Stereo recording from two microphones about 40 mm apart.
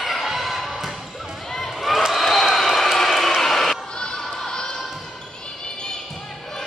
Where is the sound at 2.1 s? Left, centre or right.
Centre.